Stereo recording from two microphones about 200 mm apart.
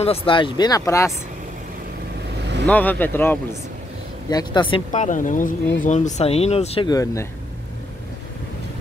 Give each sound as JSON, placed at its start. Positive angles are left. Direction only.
{"t": 0.0, "sound": "speech", "side_deg": 30}
{"t": 2.6, "sound": "speech", "side_deg": 10}
{"t": 4.3, "sound": "speech", "side_deg": 20}
{"t": 4.9, "sound": "speech", "side_deg": 40}
{"t": 6.9, "sound": "speech", "side_deg": 15}